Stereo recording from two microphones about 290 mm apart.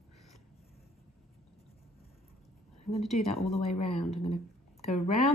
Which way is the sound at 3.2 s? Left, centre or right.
Left.